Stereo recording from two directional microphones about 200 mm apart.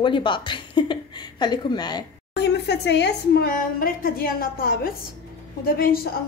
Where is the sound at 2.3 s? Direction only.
55° left (ahead or behind).